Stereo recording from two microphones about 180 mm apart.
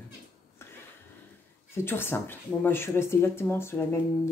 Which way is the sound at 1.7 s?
15° left (ahead or behind).